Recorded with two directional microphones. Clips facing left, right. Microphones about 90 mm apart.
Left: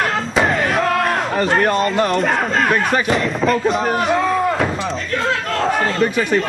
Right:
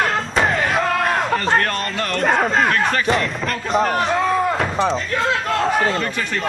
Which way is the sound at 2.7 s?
15° left (ahead or behind).